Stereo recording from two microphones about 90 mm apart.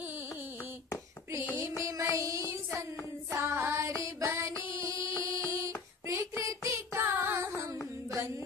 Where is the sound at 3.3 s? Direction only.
25° right (ahead or behind).